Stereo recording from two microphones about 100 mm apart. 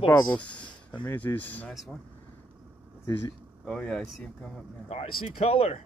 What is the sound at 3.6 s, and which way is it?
Speech, 10° left (ahead or behind).